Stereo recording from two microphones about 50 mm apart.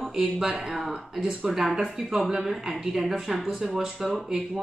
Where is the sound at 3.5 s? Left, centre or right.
Centre.